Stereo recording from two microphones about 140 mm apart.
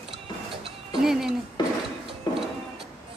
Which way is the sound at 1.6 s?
30° left (ahead or behind).